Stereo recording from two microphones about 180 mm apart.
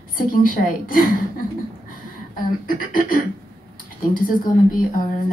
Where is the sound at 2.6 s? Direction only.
50° left (ahead or behind).